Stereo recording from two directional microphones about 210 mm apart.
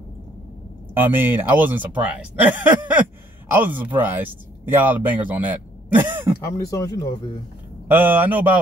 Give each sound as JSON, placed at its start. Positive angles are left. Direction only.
{"t": 0.9, "sound": "speech", "side_deg": -10}
{"t": 6.5, "sound": "speech", "side_deg": 15}
{"t": 7.9, "sound": "speech", "side_deg": -10}